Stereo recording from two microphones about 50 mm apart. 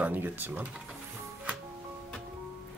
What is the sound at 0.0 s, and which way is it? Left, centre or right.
Speech, right.